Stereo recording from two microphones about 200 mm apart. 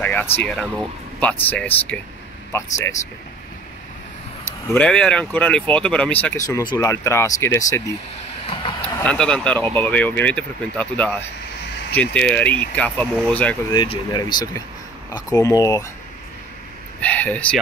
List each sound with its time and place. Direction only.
0.0 s speech: 10° left (ahead or behind)
4.6 s speech: 5° left (ahead or behind)
6.5 s speech: 20° left (ahead or behind)
9.0 s speech: 5° left (ahead or behind)
13.7 s speech: 20° left (ahead or behind)
17.0 s speech: 5° left (ahead or behind)